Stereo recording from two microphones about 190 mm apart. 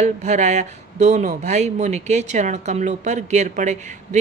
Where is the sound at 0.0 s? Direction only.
40° right (ahead or behind).